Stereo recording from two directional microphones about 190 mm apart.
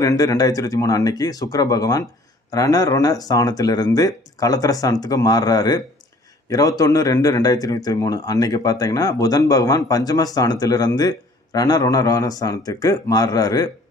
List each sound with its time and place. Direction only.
0.0 s speech: 20° left (ahead or behind)
6.8 s speech: 20° left (ahead or behind)